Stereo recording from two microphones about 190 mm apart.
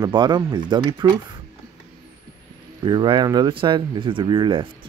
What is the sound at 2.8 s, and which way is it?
Speech, 25° right (ahead or behind).